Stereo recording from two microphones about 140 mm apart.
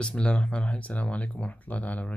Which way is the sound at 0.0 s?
5° left (ahead or behind).